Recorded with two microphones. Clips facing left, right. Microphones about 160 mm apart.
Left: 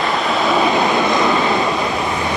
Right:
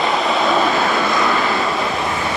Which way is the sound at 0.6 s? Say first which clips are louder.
Left 2 dB; 20° left (ahead or behind).